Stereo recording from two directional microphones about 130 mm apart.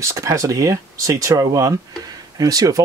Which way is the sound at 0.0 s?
25° right (ahead or behind).